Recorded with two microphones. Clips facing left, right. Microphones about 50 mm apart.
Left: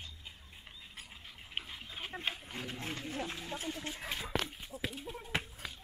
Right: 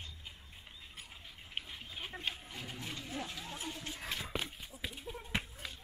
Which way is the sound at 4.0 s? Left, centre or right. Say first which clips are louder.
Left 2 dB; centre.